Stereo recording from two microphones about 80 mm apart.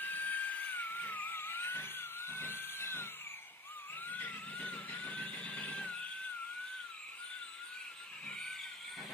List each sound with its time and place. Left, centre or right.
0.0 s dental drill: left
4.1 s vehicle: centre
8.3 s vehicle: centre